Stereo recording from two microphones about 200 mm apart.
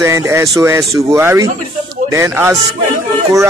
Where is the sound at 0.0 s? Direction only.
15° right (ahead or behind).